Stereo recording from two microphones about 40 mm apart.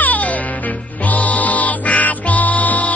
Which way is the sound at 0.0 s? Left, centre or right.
Left.